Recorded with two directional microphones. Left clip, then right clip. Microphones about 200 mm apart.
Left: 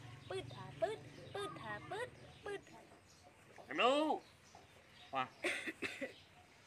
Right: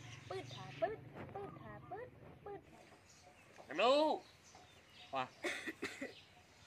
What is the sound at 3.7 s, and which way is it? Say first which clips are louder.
Speech: right 1 dB; 20° right (ahead or behind).